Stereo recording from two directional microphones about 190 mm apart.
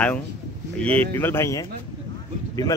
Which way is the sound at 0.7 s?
10° left (ahead or behind).